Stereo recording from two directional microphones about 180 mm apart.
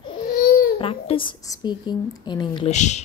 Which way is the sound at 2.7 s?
40° left (ahead or behind).